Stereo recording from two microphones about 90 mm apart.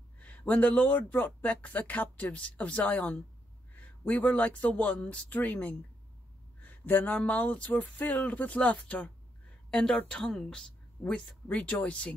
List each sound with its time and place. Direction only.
0.2 s speech: 15° left (ahead or behind)